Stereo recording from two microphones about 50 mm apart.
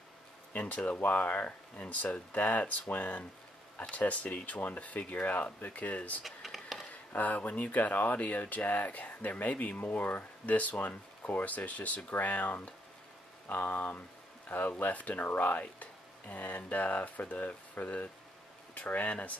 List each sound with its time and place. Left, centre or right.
0.5 s speech: left
6.2 s a sound: centre
6.9 s speech: left